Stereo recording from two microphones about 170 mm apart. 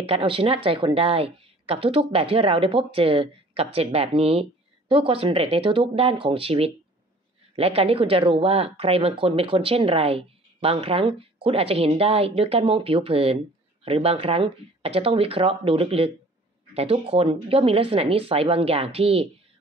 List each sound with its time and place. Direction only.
0.0 s a woman's voice: 35° right (ahead or behind)